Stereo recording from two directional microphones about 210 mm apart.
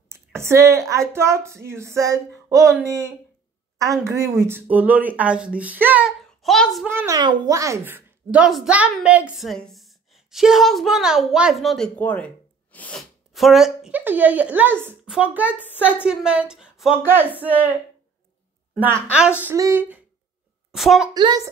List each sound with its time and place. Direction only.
0.1 s speech: 10° right (ahead or behind)
4.1 s speech: 15° right (ahead or behind)
6.9 s speech: 10° right (ahead or behind)
19.0 s speech: 5° right (ahead or behind)
21.1 s speech: 20° right (ahead or behind)